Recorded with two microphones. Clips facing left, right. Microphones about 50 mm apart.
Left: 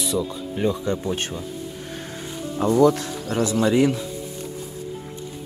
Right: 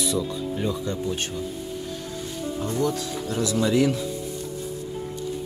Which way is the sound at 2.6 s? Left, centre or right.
Left.